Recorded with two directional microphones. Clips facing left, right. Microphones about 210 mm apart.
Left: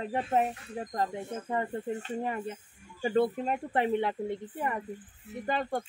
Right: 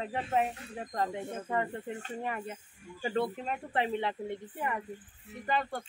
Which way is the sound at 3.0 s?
45° left (ahead or behind).